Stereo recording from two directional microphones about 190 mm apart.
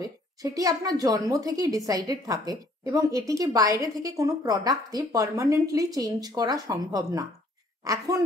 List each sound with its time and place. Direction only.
0.0 s a woman's voice: 20° right (ahead or behind)